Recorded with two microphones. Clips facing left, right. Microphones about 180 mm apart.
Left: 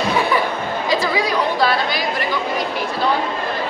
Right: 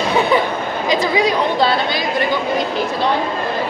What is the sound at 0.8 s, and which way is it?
Speech, 20° right (ahead or behind).